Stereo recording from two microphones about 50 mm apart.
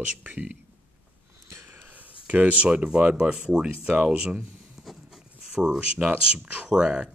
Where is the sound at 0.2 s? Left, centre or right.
Right.